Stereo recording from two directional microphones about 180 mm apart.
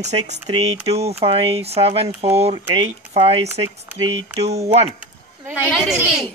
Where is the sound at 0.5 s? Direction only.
35° right (ahead or behind).